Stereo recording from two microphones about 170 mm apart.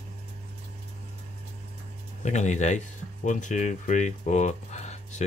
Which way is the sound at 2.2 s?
45° left (ahead or behind).